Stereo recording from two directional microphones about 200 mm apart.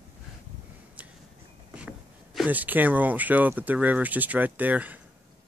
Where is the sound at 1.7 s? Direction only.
5° right (ahead or behind).